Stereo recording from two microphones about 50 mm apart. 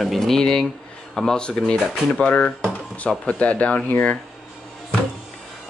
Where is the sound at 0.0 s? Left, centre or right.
Centre; by 3.8 s left.